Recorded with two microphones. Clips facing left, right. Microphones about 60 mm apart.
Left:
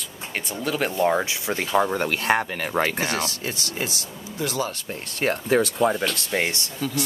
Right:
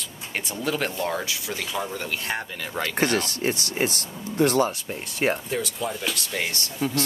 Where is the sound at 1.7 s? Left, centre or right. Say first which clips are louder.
Left 10 dB; left.